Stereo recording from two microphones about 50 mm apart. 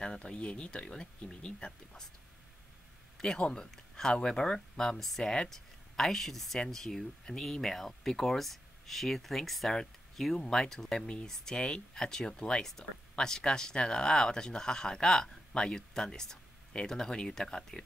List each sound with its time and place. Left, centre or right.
0.0 s speech: centre
3.3 s speech: left
3.7 s speech: centre